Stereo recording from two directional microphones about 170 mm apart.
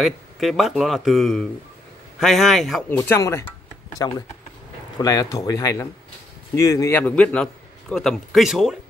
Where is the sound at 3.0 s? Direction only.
15° left (ahead or behind); by 8.7 s centre (ahead or behind).